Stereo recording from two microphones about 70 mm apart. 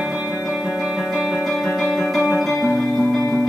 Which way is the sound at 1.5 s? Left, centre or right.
Centre.